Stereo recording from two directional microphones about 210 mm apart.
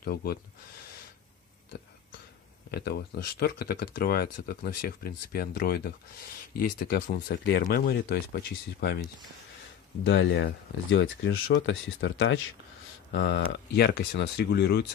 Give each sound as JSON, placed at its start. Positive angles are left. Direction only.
{"t": 0.0, "sound": "speech", "side_deg": 45}
{"t": 2.7, "sound": "speech", "side_deg": 50}
{"t": 10.0, "sound": "speech", "side_deg": 60}
{"t": 13.1, "sound": "speech", "side_deg": 55}